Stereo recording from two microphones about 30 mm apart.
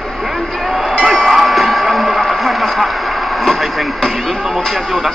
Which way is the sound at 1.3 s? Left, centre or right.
Centre.